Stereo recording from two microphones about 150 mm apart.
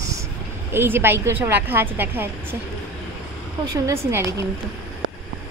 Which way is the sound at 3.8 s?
20° right (ahead or behind).